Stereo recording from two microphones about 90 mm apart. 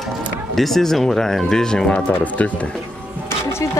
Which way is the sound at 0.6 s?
5° left (ahead or behind).